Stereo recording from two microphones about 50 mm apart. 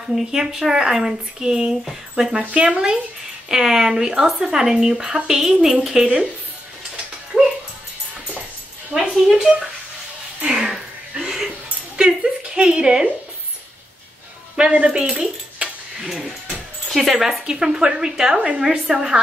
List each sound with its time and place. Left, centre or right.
0.1 s speech: centre
2.5 s speech: centre
8.9 s speech: centre
10.7 s a sound: centre
14.6 s speech: right
17.1 s speech: centre